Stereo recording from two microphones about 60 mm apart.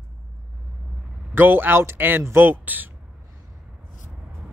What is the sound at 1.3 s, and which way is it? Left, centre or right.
A man's voice, right.